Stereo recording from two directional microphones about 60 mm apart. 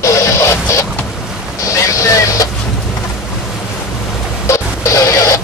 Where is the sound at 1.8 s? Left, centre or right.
Left.